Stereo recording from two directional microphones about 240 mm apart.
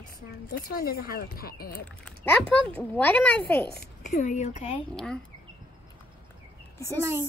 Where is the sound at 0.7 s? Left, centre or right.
Left.